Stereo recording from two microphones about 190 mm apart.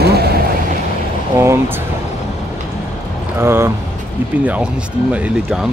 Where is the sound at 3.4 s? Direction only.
15° right (ahead or behind).